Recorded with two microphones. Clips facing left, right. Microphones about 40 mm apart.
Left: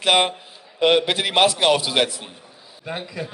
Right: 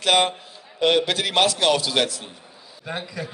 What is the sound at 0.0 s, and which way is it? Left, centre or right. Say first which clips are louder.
A man's voice: left 1 dB; centre.